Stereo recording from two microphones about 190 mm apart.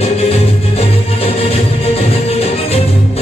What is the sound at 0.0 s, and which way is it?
Music, 30° left (ahead or behind).